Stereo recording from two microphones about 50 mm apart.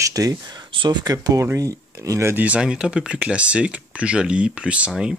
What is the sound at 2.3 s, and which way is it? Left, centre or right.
Speech, right.